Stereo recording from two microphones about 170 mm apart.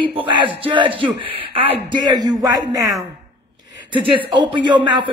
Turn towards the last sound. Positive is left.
turn(degrees=-25)  # may be behind; listen again after turning